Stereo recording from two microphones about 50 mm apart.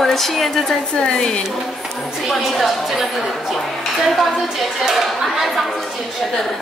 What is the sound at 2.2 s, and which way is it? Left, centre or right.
Speech, centre.